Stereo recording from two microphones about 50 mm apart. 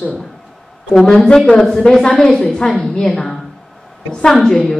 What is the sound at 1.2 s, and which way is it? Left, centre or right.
A woman's voice, centre.